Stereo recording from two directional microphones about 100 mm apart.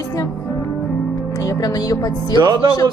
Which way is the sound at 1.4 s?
35° left (ahead or behind).